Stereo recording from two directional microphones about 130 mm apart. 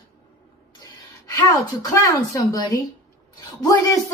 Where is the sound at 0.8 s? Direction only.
30° left (ahead or behind).